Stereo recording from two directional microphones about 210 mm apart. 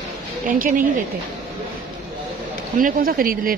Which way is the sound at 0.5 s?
40° right (ahead or behind).